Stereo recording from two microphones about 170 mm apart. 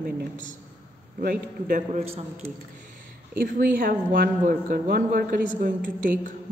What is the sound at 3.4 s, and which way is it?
A woman's voice, 60° right (ahead or behind).